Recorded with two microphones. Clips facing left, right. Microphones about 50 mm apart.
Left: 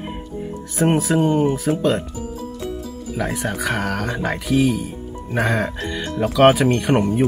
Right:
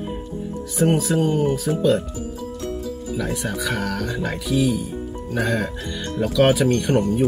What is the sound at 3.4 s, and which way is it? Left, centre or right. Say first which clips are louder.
Speech: left 2 dB; centre.